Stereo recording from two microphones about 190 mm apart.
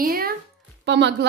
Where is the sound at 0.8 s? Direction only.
65° right (ahead or behind).